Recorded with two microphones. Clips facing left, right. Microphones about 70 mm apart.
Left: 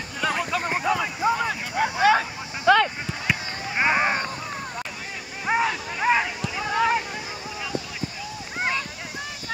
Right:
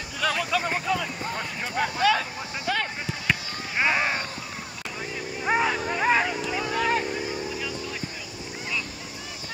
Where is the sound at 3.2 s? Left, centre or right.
Left.